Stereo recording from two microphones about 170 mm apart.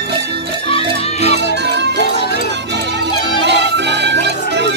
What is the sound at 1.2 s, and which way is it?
Music, 80° right.